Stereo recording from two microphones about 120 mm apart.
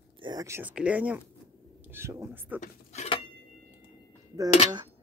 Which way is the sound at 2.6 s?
65° left (ahead or behind).